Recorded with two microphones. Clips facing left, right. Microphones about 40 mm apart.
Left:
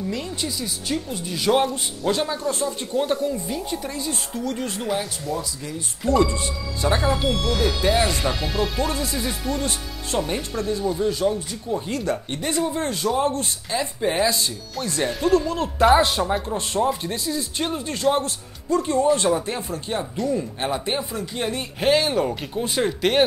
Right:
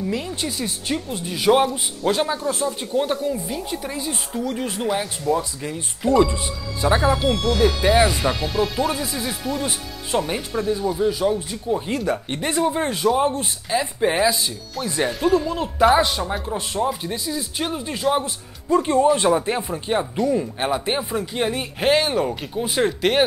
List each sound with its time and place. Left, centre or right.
0.4 s speech: right
0.8 s speech: right
5.2 s speech: right
6.8 s speech: centre
7.2 s speech: centre
11.1 s speech: centre
18.7 s speech: right; by 23.2 s centre